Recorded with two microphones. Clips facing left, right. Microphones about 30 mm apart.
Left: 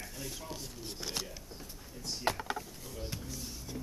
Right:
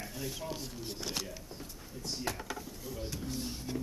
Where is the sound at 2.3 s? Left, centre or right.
Left.